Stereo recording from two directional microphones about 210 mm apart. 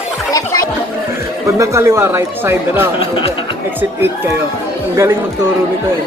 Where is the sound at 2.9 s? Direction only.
25° left (ahead or behind).